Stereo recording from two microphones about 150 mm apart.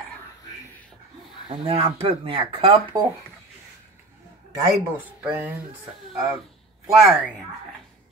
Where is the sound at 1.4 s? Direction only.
40° right (ahead or behind).